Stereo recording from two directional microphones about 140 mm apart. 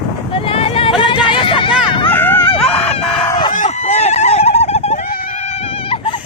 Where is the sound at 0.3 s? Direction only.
40° left (ahead or behind).